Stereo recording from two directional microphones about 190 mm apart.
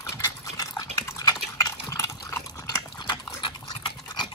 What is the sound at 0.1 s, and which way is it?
Dog, 15° left (ahead or behind).